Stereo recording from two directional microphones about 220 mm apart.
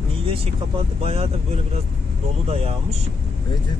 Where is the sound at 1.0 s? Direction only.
25° right (ahead or behind).